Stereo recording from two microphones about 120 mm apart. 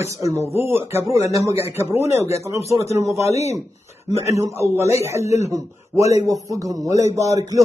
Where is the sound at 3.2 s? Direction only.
65° left (ahead or behind).